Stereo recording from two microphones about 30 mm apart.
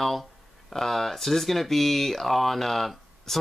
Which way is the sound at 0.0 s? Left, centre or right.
Centre.